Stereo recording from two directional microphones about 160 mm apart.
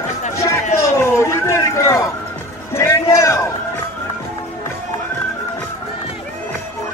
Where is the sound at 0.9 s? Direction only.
15° left (ahead or behind).